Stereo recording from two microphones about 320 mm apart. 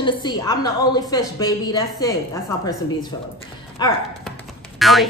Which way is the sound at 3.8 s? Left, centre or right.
Centre.